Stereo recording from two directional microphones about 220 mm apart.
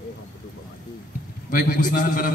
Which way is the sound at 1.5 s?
40° left (ahead or behind).